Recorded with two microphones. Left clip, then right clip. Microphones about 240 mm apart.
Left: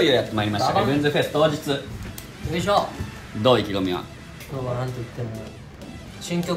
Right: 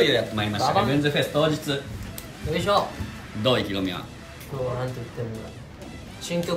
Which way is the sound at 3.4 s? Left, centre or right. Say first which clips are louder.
Left 4 dB; centre.